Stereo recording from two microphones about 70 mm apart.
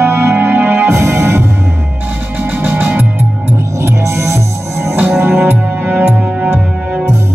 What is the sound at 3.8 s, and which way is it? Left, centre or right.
Music, right.